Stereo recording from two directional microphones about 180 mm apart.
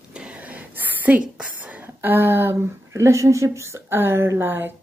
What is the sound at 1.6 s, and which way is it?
A woman's voice, 10° right (ahead or behind).